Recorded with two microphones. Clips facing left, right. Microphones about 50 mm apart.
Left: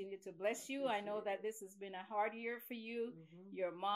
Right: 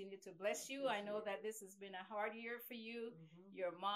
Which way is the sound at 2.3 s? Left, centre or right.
Left.